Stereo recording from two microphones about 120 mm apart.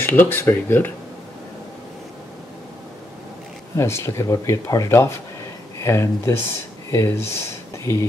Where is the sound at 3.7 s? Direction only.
20° left (ahead or behind).